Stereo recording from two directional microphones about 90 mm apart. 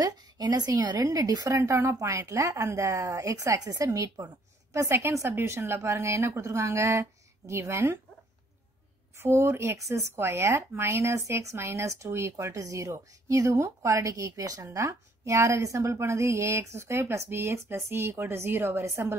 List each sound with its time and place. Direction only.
0.0 s speech: 45° right (ahead or behind)
1.6 s speech: 35° right (ahead or behind)
9.1 s speech: 30° right (ahead or behind)